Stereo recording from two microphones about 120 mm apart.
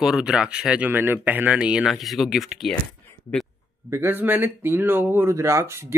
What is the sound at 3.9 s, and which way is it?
Speech, 20° right (ahead or behind).